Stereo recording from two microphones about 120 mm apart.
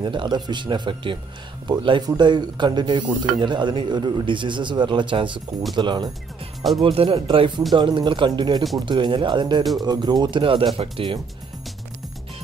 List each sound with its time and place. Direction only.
0.0 s speech: 40° right (ahead or behind)